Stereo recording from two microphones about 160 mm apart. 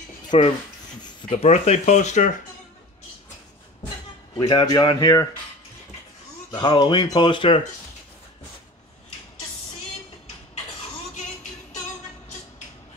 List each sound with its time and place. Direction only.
0.3 s speech: 40° left (ahead or behind)
4.4 s speech: 25° left (ahead or behind)
6.5 s speech: 30° left (ahead or behind)